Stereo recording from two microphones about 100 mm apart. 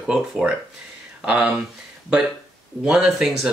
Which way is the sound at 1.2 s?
10° right (ahead or behind).